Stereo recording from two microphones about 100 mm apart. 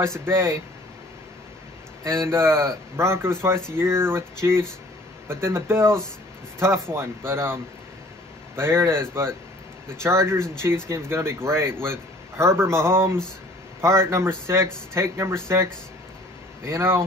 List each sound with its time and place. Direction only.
0.0 s a man's voice: 25° right (ahead or behind)
2.0 s a man's voice: 25° right (ahead or behind)